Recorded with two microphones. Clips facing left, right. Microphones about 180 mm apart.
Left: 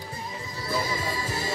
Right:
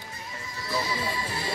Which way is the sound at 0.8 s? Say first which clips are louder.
Left 1 dB; 45° left (ahead or behind).